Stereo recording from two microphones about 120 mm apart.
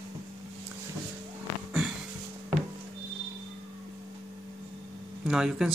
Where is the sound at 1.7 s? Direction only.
5° right (ahead or behind).